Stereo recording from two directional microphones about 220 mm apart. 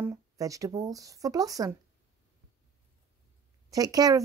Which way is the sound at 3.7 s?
15° right (ahead or behind).